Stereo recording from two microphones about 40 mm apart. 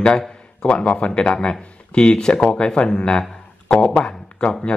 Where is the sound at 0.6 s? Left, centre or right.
Left.